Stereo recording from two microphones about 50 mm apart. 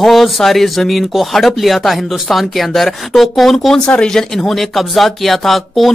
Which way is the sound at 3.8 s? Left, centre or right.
Centre.